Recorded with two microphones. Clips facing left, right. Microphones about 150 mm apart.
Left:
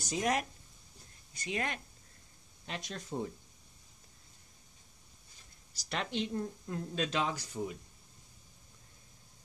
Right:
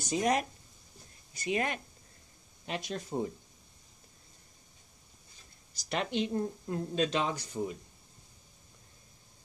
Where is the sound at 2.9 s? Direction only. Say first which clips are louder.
Right 3 dB; 20° right (ahead or behind).